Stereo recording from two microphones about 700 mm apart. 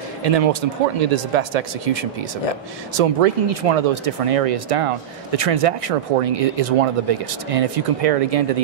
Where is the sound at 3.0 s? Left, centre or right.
Right.